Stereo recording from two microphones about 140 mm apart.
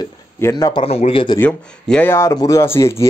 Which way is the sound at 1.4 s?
10° left (ahead or behind).